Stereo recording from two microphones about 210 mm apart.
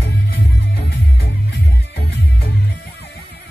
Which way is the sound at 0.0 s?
50° left (ahead or behind).